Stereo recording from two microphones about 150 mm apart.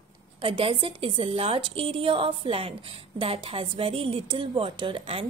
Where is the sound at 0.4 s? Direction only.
35° right (ahead or behind).